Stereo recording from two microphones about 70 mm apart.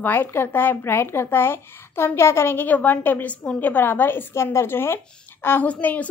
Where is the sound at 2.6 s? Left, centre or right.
Left.